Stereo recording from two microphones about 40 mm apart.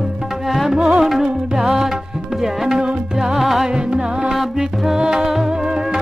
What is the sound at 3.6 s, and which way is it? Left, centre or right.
Music, right.